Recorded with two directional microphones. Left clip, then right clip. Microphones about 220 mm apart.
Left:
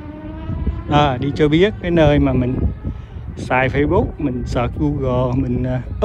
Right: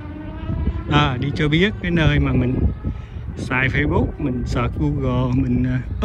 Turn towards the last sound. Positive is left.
turn(degrees=15)  # may be behind; listen again after turning